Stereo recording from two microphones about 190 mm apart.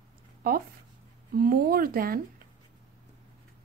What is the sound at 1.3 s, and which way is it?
Speech, 50° right (ahead or behind).